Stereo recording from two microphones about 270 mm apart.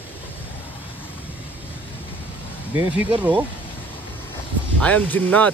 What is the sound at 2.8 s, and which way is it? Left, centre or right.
Speech, centre.